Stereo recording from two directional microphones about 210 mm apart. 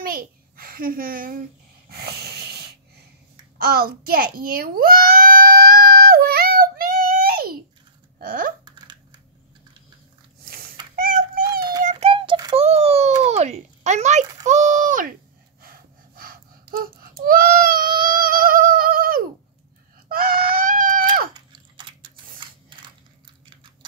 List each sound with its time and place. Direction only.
0.0 s a child's voice: 45° right (ahead or behind)
1.9 s wheeze: 50° right (ahead or behind)
3.5 s a sound: 45° right (ahead or behind)
8.2 s typing: 40° right (ahead or behind)
8.6 s typing: 20° right (ahead or behind)
11.8 s a sound: 30° right (ahead or behind)
15.6 s gasp: 45° right (ahead or behind)
20.1 s a sound: 45° right (ahead or behind)
21.3 s chewing: 20° right (ahead or behind)